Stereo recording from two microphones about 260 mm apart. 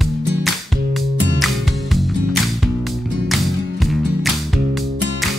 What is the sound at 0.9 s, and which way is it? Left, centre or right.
Music, centre.